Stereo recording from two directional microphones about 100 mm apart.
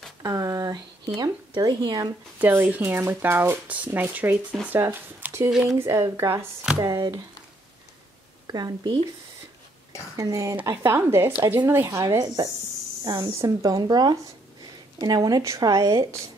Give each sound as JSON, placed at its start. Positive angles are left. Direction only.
{"t": 0.2, "sound": "speech", "side_deg": -30}
{"t": 2.3, "sound": "speech", "side_deg": -20}
{"t": 5.5, "sound": "speech", "side_deg": -5}
{"t": 5.8, "sound": "speech", "side_deg": -25}
{"t": 6.8, "sound": "speech", "side_deg": -40}
{"t": 8.5, "sound": "speech", "side_deg": -40}
{"t": 10.1, "sound": "speech", "side_deg": -35}